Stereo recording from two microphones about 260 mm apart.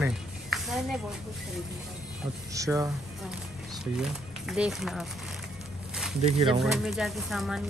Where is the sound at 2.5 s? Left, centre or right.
Centre.